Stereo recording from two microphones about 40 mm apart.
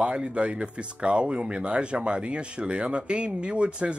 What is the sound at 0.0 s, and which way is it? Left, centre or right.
Speech, right.